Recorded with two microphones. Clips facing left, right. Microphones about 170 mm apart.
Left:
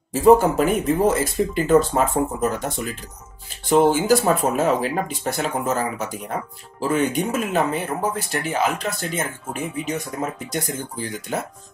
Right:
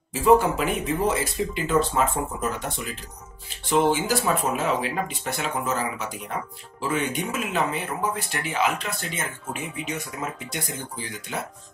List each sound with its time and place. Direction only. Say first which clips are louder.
0.1 s speech: left 4 dB; 45° left (ahead or behind)
3.4 s speech: left 5 dB; 45° left (ahead or behind)